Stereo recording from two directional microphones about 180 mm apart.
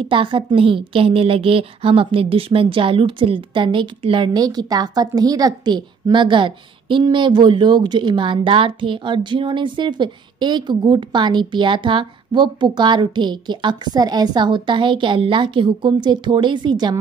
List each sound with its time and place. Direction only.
0.1 s a woman's voice: 30° right (ahead or behind)